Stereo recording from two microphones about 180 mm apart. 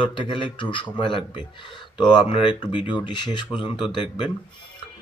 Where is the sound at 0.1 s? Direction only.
25° left (ahead or behind).